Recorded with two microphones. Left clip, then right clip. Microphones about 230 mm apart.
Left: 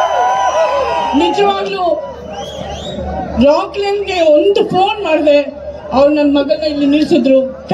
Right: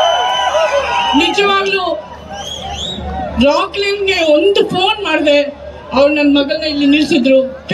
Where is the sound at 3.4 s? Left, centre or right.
Right.